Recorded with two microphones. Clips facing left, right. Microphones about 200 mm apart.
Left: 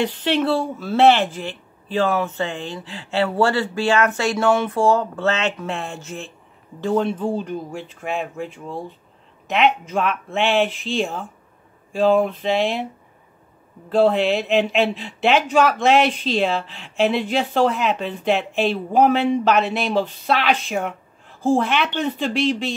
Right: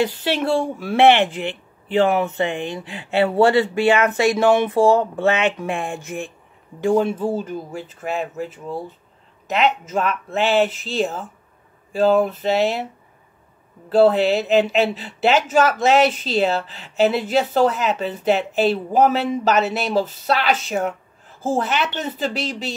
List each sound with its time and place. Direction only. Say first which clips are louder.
0.0 s speech: left 1 dB; 10° right (ahead or behind)
13.8 s speech: right 2 dB; centre (ahead or behind)